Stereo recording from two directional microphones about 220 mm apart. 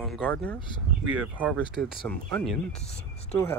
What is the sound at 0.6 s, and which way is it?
Speech, 20° left (ahead or behind).